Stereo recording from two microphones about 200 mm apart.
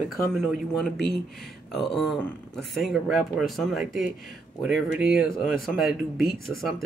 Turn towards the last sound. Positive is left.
turn(degrees=0)  # may be behind; listen again after turning